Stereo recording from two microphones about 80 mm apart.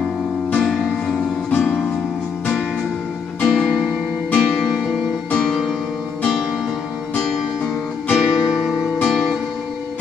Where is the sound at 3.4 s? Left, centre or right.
Centre.